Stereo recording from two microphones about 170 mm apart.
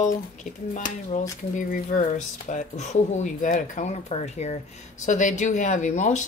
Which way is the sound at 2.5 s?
45° left (ahead or behind).